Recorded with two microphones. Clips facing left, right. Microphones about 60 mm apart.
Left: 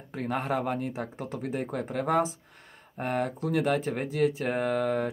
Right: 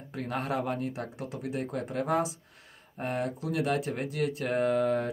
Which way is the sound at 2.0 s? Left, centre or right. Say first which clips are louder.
Left 3 dB; left.